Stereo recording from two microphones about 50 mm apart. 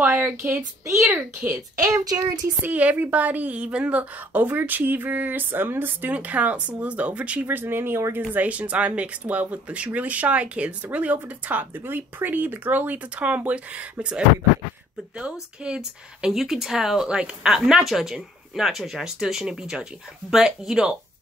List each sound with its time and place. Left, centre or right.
0.0 s a woman's voice: right
2.6 s a woman's voice: right
6.1 s speech: right
7.4 s speech: right
8.5 s speech: right
11.7 s a woman's voice: right
15.8 s speech: centre